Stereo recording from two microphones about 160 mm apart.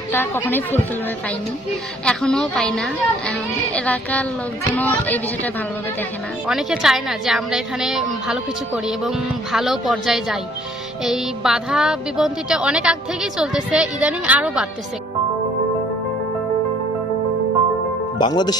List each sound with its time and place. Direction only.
0.1 s speech: 15° left (ahead or behind)
2.0 s a woman's voice: 5° left (ahead or behind)
6.4 s a woman's voice: 5° right (ahead or behind)
18.2 s speech: 25° left (ahead or behind)